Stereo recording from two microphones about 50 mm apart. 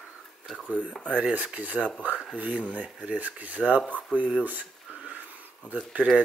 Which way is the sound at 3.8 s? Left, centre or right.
Left.